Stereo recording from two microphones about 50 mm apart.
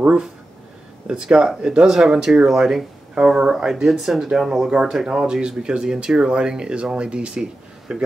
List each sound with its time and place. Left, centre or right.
1.0 s speech: centre